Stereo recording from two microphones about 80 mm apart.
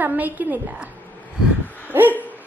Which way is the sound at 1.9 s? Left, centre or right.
Right.